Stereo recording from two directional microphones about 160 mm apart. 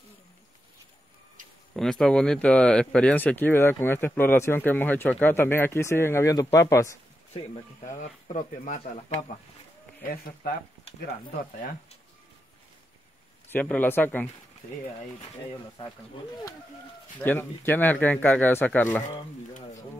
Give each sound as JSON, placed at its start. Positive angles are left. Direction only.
{"t": 1.7, "sound": "speech", "side_deg": 5}
{"t": 7.8, "sound": "speech", "side_deg": 50}
{"t": 10.0, "sound": "speech", "side_deg": 70}
{"t": 13.5, "sound": "speech", "side_deg": 10}
{"t": 17.2, "sound": "speech", "side_deg": 10}